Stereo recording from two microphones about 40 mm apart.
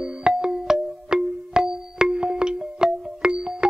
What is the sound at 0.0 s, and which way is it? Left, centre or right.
Music, right.